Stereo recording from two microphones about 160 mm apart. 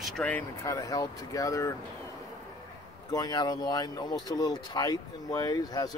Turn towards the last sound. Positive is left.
turn(degrees=25)  # may be behind; listen again after turning